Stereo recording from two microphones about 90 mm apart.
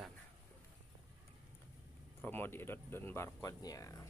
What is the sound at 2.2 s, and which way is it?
Speech, 25° left (ahead or behind).